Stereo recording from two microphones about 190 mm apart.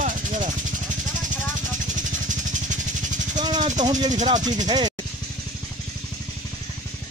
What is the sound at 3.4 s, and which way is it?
Vehicle, 20° right (ahead or behind).